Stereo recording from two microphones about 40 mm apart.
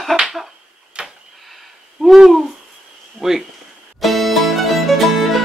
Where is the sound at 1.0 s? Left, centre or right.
Right.